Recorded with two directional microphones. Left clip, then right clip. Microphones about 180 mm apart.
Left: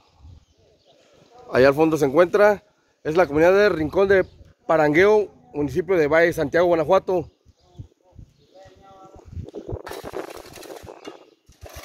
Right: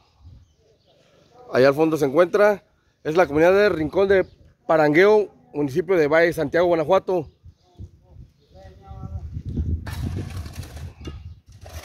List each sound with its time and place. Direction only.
1.5 s a man's voice: 5° left (ahead or behind)
11.6 s scrape: 25° left (ahead or behind)